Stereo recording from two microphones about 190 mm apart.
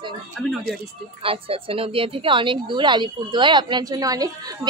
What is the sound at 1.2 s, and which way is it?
Speech, 30° right (ahead or behind).